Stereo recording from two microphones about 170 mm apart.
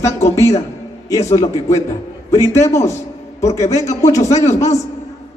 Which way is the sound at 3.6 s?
40° left (ahead or behind).